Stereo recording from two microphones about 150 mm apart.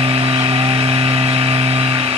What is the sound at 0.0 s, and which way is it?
Vehicle, 40° right (ahead or behind).